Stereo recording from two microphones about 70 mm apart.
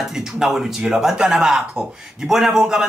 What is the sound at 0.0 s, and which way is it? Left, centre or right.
Speech, centre.